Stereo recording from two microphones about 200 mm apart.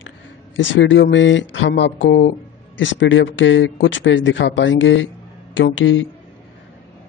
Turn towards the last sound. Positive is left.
turn(degrees=70)  # may be behind; listen again after turning